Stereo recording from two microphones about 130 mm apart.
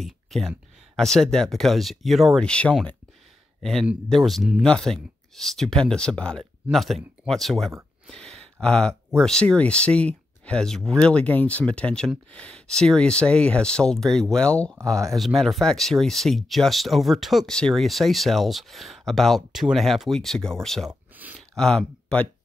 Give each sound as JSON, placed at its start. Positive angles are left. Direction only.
{"t": 0.0, "sound": "speech", "side_deg": 0}
{"t": 4.1, "sound": "speech", "side_deg": 0}
{"t": 8.1, "sound": "a sound", "side_deg": 5}
{"t": 9.2, "sound": "speech", "side_deg": 5}
{"t": 14.8, "sound": "speech", "side_deg": -25}
{"t": 15.1, "sound": "speech", "side_deg": 0}